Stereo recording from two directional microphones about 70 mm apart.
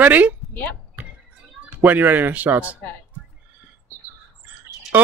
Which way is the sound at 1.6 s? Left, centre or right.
Right.